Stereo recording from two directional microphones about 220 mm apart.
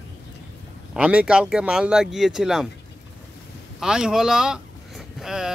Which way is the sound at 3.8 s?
5° right (ahead or behind).